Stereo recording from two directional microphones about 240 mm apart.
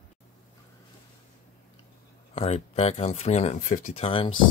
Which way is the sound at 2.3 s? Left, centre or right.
Left.